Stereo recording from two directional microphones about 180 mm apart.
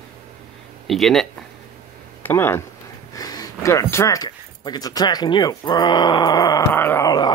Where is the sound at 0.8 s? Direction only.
Centre (ahead or behind).